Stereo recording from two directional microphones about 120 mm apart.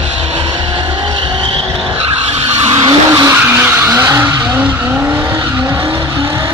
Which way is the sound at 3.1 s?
25° right (ahead or behind).